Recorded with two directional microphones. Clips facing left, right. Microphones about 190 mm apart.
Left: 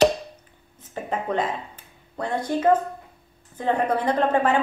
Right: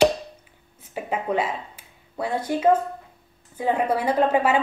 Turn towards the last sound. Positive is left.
turn(degrees=-10)  # may be behind; listen again after turning